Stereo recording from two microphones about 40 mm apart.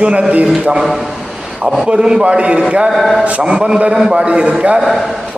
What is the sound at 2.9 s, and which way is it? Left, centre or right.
Speech, centre.